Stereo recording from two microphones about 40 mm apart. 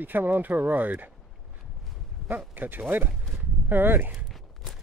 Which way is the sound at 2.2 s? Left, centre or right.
Right.